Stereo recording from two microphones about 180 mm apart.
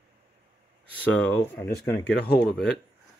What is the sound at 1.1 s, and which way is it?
Speech, 10° left (ahead or behind).